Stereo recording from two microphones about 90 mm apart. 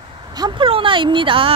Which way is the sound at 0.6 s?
70° right (ahead or behind).